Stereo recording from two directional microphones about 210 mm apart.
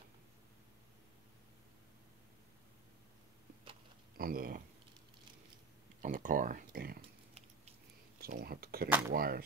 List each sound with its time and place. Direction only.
4.2 s speech: 45° right (ahead or behind)
6.0 s speech: 40° right (ahead or behind)
8.2 s speech: 45° right (ahead or behind)